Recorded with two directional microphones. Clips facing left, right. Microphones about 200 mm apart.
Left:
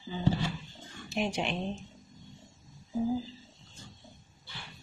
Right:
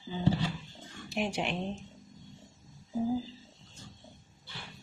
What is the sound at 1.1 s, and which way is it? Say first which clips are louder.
Speech: left 1 dB; 10° right (ahead or behind).